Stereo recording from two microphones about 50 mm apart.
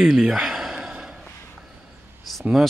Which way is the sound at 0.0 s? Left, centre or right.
Centre.